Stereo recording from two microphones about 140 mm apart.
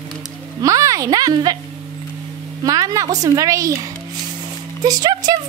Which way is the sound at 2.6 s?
25° right (ahead or behind).